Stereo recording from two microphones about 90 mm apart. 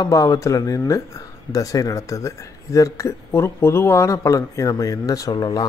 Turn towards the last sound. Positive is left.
turn(degrees=45)  # may be behind; listen again after turning